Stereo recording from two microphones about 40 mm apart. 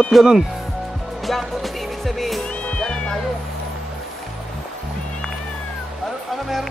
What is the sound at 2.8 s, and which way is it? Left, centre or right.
Cat, centre.